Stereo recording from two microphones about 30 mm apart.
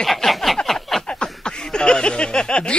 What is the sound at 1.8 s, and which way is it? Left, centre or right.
Speech, left.